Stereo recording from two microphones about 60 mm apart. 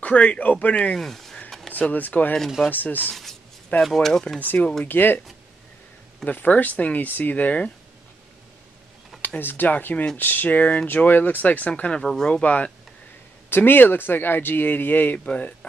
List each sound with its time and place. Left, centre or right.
0.0 s speech: left
0.9 s a sound: centre
1.7 s speech: left
3.8 s speech: centre
4.8 s speech: left
6.2 s speech: left
9.4 s speech: left
12.0 s speech: centre
13.5 s speech: left
15.1 s speech: centre